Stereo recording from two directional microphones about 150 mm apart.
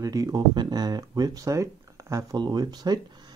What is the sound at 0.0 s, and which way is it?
Speech, 25° right (ahead or behind).